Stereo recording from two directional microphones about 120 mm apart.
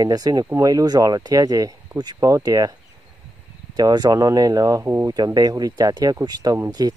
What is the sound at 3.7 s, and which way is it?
Speech, 35° right (ahead or behind).